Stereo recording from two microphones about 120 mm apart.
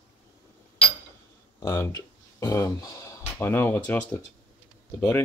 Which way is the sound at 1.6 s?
20° left (ahead or behind).